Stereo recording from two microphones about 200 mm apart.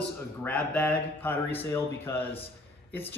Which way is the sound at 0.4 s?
5° left (ahead or behind).